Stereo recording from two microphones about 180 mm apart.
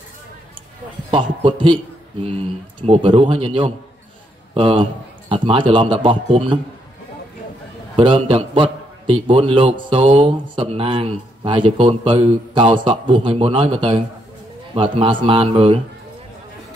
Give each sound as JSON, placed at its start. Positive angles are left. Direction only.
{"t": 1.1, "sound": "a man's voice", "side_deg": -30}
{"t": 7.9, "sound": "a man's voice", "side_deg": -30}